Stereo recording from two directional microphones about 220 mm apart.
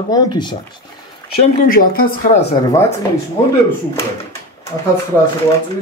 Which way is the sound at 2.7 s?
10° left (ahead or behind).